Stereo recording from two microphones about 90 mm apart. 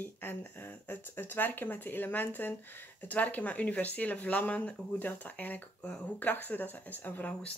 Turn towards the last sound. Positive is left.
turn(degrees=20)  # may be behind; listen again after turning